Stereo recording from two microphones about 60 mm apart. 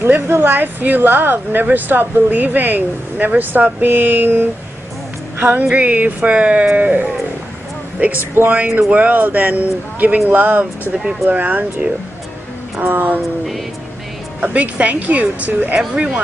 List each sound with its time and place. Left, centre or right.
0.0 s speech: right
11.0 s speech: centre
11.2 s speech: right
14.4 s speech: right